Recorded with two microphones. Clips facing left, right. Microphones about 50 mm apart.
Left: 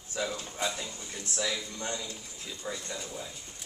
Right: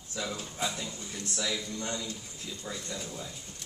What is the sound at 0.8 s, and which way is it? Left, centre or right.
Speech, centre.